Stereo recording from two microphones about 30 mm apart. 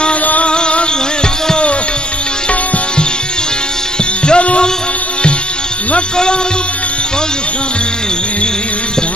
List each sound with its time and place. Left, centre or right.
0.5 s music: left
4.3 s music: left